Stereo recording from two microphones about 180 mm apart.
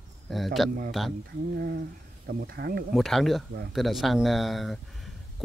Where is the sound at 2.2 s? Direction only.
55° right (ahead or behind).